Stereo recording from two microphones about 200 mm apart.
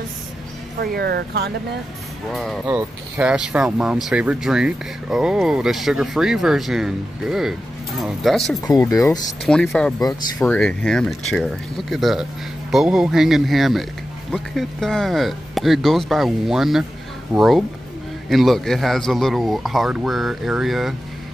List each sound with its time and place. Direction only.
0.7 s speech: 50° right (ahead or behind)
2.3 s speech: centre (ahead or behind)
8.5 s speech: 20° left (ahead or behind)
9.5 s speech: 5° left (ahead or behind)